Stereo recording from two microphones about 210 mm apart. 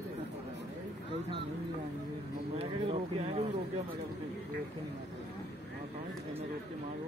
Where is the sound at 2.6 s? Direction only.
30° right (ahead or behind).